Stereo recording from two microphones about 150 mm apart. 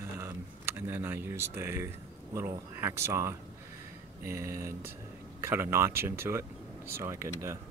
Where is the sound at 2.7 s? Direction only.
15° right (ahead or behind).